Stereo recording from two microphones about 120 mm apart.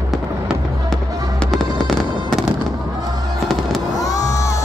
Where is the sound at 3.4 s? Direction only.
Centre (ahead or behind).